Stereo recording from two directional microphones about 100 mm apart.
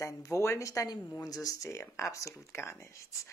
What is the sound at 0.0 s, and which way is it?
Speech, 30° left (ahead or behind).